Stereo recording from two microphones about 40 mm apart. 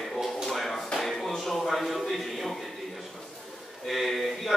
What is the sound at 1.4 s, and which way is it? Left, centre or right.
Speech, centre.